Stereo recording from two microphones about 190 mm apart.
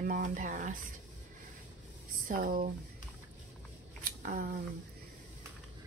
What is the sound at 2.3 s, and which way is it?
Speech, 45° right (ahead or behind).